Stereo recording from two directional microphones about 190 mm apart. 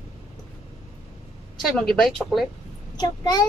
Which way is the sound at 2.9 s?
20° left (ahead or behind).